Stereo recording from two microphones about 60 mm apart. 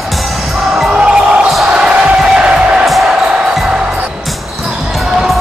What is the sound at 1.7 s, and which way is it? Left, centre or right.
Music, centre.